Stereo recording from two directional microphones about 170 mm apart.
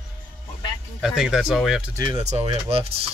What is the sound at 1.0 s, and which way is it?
Speech, 5° right (ahead or behind).